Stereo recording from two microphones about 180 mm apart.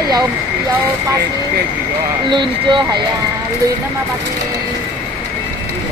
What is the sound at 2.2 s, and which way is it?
Speech, 25° right (ahead or behind).